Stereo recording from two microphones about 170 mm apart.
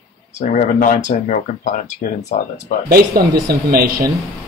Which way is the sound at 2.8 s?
60° right (ahead or behind).